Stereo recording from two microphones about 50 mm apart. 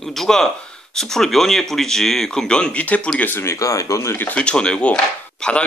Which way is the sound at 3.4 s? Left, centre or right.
Left.